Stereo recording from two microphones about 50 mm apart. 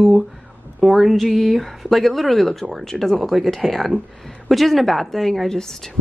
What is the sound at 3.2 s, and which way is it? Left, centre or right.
Speech, centre.